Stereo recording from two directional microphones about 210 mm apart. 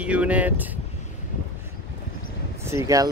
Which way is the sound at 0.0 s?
5° right (ahead or behind).